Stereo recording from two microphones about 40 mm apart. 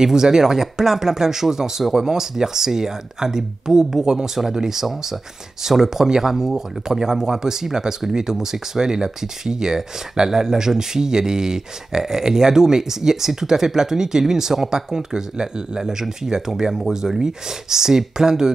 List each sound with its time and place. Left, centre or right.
0.0 s speech: centre